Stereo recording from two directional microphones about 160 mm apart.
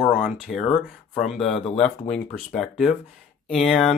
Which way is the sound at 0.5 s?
Centre (ahead or behind).